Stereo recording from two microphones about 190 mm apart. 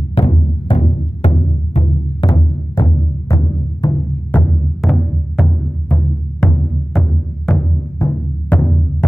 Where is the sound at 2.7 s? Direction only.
20° left (ahead or behind).